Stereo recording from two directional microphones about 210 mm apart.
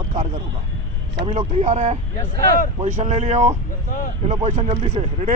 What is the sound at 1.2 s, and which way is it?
Speech, 30° right (ahead or behind).